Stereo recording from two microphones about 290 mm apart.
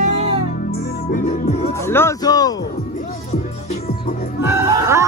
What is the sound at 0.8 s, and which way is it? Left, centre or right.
Music, left.